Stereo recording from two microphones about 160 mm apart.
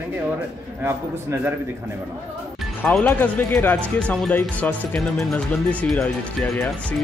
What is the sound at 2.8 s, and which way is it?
Speech, 10° left (ahead or behind).